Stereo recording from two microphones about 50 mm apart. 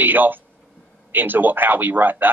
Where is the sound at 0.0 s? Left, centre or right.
Right.